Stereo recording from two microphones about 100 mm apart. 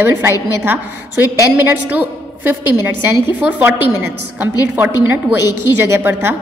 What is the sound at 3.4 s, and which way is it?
A woman's voice, 15° right (ahead or behind).